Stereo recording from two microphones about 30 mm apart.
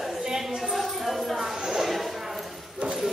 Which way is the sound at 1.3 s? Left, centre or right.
Centre.